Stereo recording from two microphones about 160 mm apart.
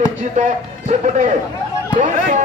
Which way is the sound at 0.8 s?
50° right (ahead or behind).